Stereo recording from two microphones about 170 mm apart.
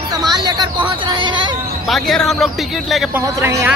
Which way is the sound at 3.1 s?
15° right (ahead or behind).